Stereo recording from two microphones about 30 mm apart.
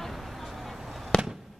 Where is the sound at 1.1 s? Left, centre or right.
Left.